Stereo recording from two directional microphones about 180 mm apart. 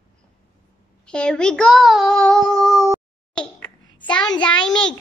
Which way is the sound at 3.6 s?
25° left (ahead or behind).